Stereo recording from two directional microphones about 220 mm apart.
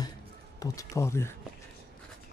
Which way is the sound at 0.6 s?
15° left (ahead or behind).